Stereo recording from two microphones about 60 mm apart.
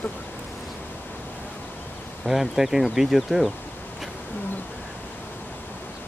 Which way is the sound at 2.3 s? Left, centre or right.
Centre.